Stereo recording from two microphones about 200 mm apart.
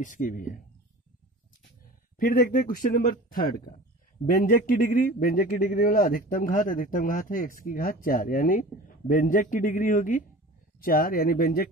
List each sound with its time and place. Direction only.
0.0 s speech: 40° left (ahead or behind)
2.1 s a man's voice: 45° left (ahead or behind)